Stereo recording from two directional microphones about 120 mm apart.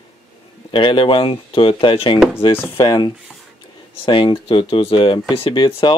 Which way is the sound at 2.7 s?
35° left (ahead or behind).